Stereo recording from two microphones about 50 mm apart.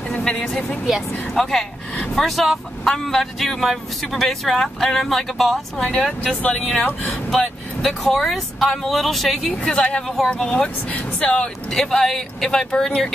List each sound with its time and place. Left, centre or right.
0.2 s speech: centre
5.8 s speech: centre
7.8 s speech: centre
9.5 s speech: centre
10.1 s speech: centre
11.1 s speech: centre
11.7 s speech: centre